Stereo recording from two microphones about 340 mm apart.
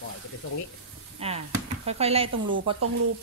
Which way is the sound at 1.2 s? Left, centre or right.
Centre.